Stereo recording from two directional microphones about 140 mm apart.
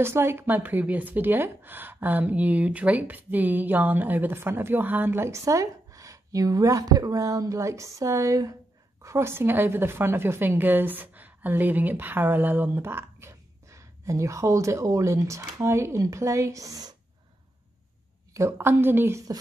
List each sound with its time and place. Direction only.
0.0 s a woman's voice: 15° right (ahead or behind)
18.3 s a woman's voice: 20° right (ahead or behind)